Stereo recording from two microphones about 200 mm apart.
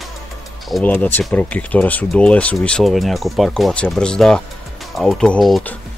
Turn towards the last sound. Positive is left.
turn(degrees=0)  # may be behind; listen again after turning